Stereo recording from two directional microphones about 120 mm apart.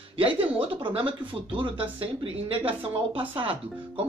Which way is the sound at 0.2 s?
50° right (ahead or behind).